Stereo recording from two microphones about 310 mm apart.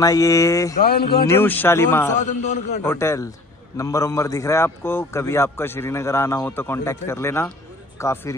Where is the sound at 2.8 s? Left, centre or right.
Centre.